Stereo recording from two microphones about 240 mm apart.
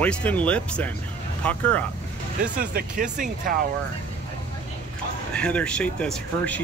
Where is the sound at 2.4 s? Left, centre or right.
Right.